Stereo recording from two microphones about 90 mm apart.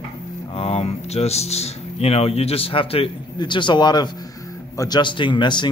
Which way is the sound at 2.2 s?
90° left.